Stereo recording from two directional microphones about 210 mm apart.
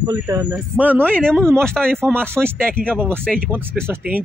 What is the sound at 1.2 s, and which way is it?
Speech, 5° left (ahead or behind).